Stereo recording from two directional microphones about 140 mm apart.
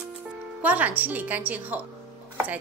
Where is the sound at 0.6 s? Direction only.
10° right (ahead or behind).